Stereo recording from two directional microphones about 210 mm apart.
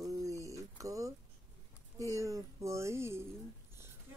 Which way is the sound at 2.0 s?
15° right (ahead or behind).